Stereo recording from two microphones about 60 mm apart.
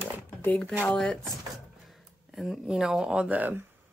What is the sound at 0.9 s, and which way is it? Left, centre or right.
Speech, centre.